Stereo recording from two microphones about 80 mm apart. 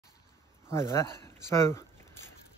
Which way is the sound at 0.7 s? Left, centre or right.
Left.